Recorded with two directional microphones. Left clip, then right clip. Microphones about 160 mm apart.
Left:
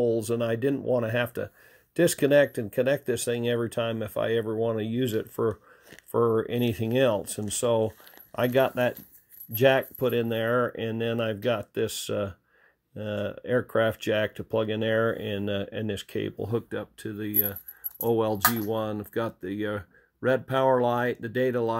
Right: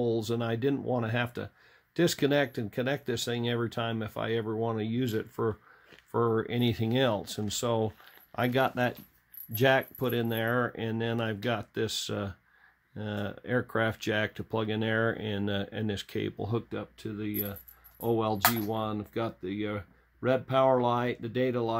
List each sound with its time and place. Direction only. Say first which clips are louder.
0.0 s speech: left 5 dB; 10° left (ahead or behind)